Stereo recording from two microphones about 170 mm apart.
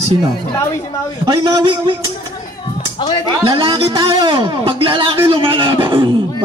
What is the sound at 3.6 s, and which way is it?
A man's voice, 30° right (ahead or behind).